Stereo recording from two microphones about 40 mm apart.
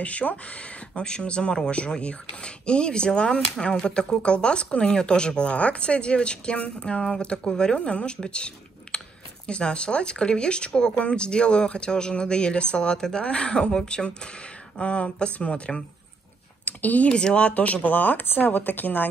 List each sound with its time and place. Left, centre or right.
0.0 s speech: left
16.6 s speech: left
17.1 s speech: left
17.8 s speech: left
18.2 s speech: left